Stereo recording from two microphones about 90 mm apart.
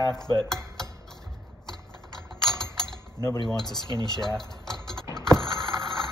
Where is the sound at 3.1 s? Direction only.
45° left (ahead or behind).